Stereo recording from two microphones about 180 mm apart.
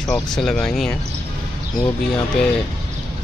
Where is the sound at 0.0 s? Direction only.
Centre (ahead or behind).